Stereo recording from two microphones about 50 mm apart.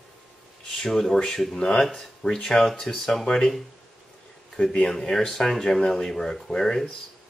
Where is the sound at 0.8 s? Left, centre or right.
Centre.